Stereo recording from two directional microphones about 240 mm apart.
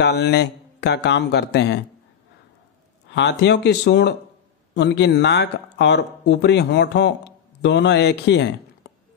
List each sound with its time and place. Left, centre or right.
0.0 s speech: left
3.1 s speech: left